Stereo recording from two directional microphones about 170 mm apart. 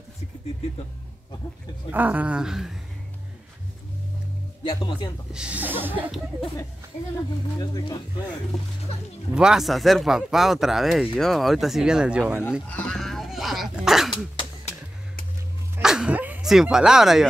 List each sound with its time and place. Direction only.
1.9 s speech: 10° right (ahead or behind)
4.6 s speech: 25° left (ahead or behind)
5.3 s speech: 5° right (ahead or behind)
7.5 s speech: 25° left (ahead or behind)
9.3 s speech: 5° right (ahead or behind)
12.6 s speech: 5° left (ahead or behind)
15.8 s a sound: 5° right (ahead or behind)